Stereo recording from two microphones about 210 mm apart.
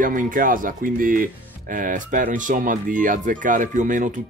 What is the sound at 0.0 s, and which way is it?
Speech, 40° right (ahead or behind).